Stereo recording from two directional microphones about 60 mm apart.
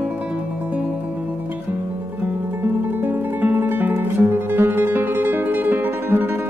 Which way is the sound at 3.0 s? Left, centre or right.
Right.